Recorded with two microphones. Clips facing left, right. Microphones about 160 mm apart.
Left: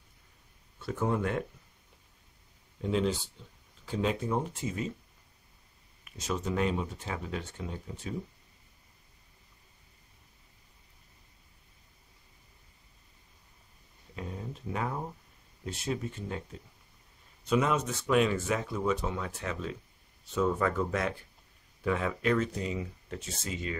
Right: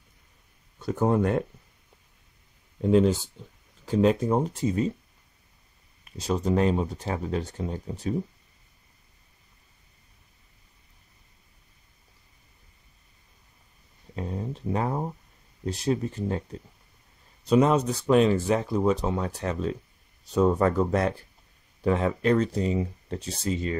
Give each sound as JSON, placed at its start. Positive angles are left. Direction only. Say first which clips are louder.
{"t": 0.7, "sound": "speech", "louder": "right 7 dB", "side_deg": -40}
{"t": 2.8, "sound": "speech", "louder": "right 9 dB", "side_deg": -45}
{"t": 6.0, "sound": "speech", "louder": "right 7 dB", "side_deg": -35}
{"t": 14.1, "sound": "a sound", "louder": "right 7 dB", "side_deg": -35}
{"t": 15.6, "sound": "speech", "louder": "right 8 dB", "side_deg": -35}
{"t": 17.5, "sound": "speech", "louder": "right 7 dB", "side_deg": -35}